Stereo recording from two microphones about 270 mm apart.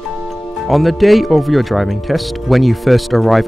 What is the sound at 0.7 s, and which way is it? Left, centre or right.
Speech, centre.